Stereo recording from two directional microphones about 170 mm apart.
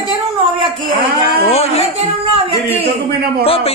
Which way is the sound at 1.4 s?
35° left (ahead or behind).